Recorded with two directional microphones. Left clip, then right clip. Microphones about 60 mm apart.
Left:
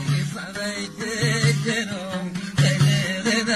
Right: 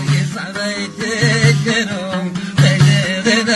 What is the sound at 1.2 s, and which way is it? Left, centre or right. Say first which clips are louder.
Music: right 8 dB; left.